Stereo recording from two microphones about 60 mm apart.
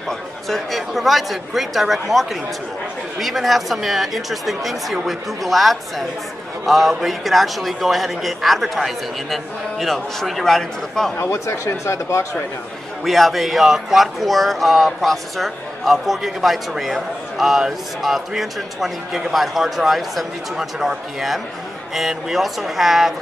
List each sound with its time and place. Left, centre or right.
0.5 s speech: centre
11.1 s speech: left
13.0 s speech: centre